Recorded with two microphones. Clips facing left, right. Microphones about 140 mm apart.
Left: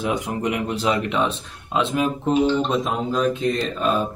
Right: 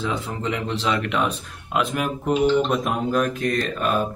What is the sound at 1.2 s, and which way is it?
Speech, 25° left (ahead or behind).